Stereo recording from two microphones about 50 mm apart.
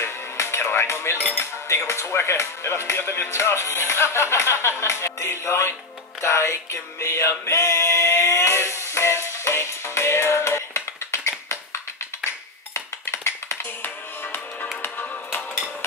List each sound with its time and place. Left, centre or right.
0.0 s music: left
1.3 s speech: left
6.2 s music: left
12.7 s tap: left
13.8 s music: left